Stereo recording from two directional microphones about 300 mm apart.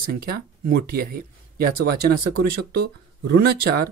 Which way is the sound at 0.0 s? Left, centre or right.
Right.